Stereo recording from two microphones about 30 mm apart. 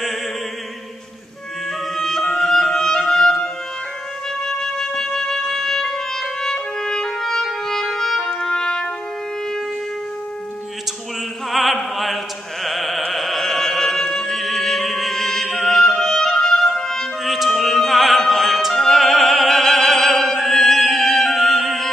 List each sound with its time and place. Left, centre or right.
2.0 s music: centre
6.5 s trumpet: left
7.6 s music: centre
11.5 s opera: centre
12.6 s music: centre
17.2 s music: centre
17.6 s opera: centre
20.9 s music: centre